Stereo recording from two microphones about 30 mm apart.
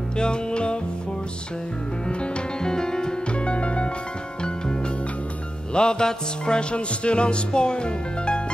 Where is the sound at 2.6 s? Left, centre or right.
Left.